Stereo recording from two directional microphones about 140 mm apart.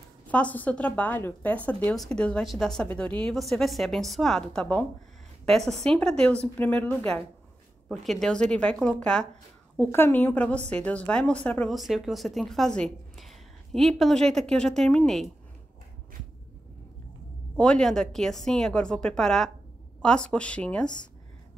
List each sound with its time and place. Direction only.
0.3 s a woman's voice: 10° left (ahead or behind)
9.8 s a woman's voice: 15° left (ahead or behind)
11.7 s a woman's voice: centre (ahead or behind)
17.6 s a woman's voice: 5° left (ahead or behind)